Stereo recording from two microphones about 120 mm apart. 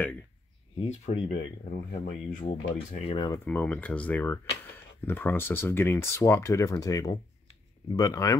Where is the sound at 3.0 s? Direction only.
45° left (ahead or behind).